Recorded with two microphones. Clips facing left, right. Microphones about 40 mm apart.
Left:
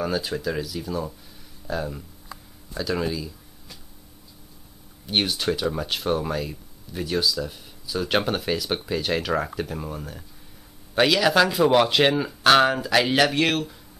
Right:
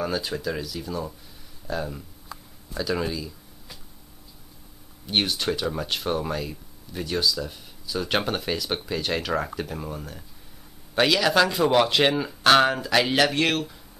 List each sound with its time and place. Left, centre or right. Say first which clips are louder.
0.0 s speech: left 1 dB; centre
5.0 s speech: left 1 dB; centre